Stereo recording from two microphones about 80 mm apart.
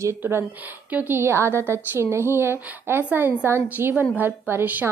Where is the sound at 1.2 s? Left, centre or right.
Right.